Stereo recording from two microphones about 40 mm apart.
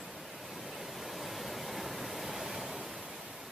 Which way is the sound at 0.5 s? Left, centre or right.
Centre.